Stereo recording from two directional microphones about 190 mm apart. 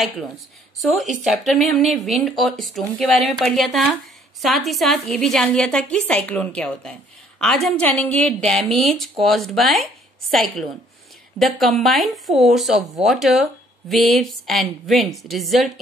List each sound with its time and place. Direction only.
1.2 s a woman's voice: centre (ahead or behind)